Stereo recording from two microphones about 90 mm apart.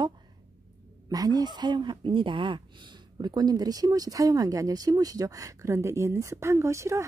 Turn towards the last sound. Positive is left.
turn(degrees=-35)  # may be behind; listen again after turning